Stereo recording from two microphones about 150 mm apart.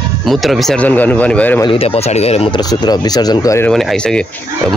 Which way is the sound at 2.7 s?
25° left (ahead or behind).